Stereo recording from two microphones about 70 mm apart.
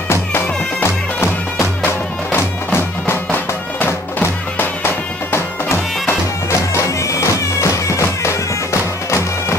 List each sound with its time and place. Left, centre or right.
0.8 s bagpipes: left
1.9 s music: left